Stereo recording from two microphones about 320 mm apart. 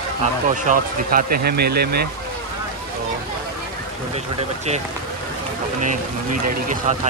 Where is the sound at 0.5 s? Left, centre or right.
Right.